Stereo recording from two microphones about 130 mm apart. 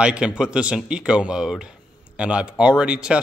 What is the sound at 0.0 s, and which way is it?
Speech, 10° right (ahead or behind).